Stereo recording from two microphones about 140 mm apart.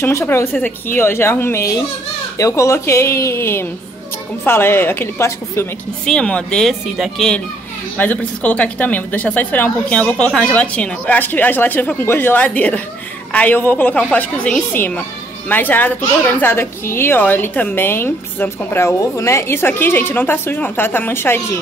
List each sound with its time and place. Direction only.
0.0 s a woman's voice: 20° left (ahead or behind)
6.0 s a woman's voice: 5° left (ahead or behind)